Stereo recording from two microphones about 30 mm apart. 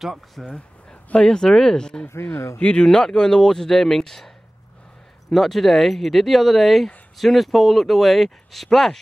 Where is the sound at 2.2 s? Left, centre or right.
Left.